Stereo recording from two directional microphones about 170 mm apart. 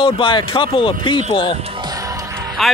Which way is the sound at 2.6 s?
Centre (ahead or behind).